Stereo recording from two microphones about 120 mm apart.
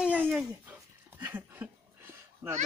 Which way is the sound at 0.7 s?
15° right (ahead or behind).